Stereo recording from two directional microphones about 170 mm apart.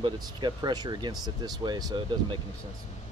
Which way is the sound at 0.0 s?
30° right (ahead or behind).